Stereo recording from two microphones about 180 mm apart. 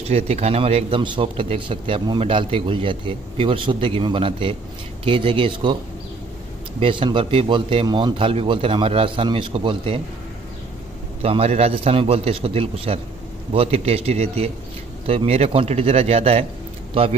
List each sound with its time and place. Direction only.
0.0 s a man's voice: 35° right (ahead or behind)
6.8 s a man's voice: 30° right (ahead or behind)
11.2 s a man's voice: 35° right (ahead or behind)